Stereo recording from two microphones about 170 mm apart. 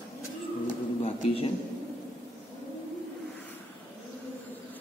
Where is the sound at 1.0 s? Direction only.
35° left (ahead or behind).